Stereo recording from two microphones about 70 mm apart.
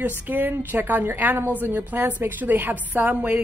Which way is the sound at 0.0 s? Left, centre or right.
Right.